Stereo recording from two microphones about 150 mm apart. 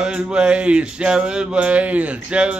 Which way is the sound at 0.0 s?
5° right (ahead or behind).